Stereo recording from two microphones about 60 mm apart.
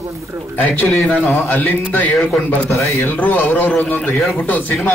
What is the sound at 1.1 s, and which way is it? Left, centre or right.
Speech, left.